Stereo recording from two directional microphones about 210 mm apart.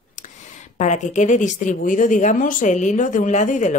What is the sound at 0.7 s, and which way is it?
Speech, 35° left (ahead or behind).